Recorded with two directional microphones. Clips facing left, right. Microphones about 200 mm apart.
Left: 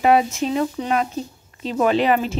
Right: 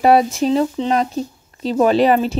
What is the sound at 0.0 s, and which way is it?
Speech, 40° right (ahead or behind).